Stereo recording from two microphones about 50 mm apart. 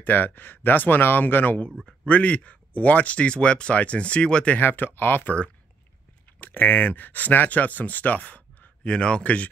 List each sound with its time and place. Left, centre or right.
0.0 s speech: left
4.6 s speech: left
6.4 s speech: left
8.9 s speech: centre